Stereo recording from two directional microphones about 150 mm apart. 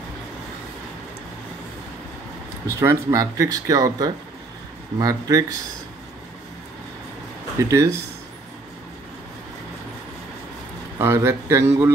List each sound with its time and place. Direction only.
2.6 s speech: 15° right (ahead or behind)
7.6 s speech: 20° right (ahead or behind)
11.0 s speech: 15° right (ahead or behind)